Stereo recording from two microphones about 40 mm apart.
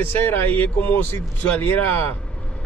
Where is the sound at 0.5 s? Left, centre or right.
Left.